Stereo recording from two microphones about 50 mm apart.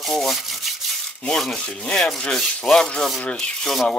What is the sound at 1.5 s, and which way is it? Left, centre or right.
Rub, centre.